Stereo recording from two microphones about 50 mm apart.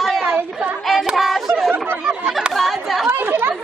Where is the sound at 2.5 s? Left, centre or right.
Centre.